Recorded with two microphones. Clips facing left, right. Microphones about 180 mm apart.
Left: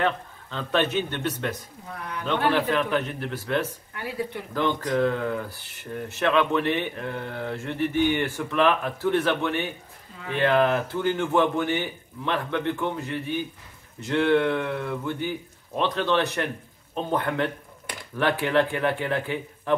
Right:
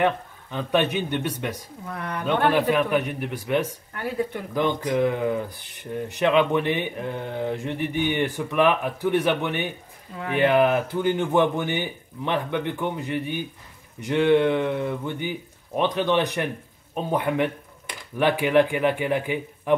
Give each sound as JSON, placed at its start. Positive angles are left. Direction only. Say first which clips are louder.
{"t": 0.0, "sound": "speech", "louder": "right 3 dB", "side_deg": -15}
{"t": 1.9, "sound": "speech", "louder": "right 4 dB", "side_deg": -60}
{"t": 2.5, "sound": "speech", "louder": "right 3 dB", "side_deg": -10}
{"t": 3.9, "sound": "a sound", "louder": "right 5 dB", "side_deg": -50}
{"t": 4.6, "sound": "speech", "louder": "right 1 dB", "side_deg": -15}